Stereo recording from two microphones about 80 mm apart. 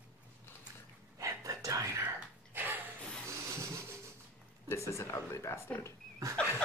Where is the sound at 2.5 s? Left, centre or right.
Right.